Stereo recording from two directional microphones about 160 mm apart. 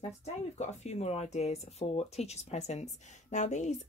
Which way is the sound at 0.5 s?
45° left (ahead or behind).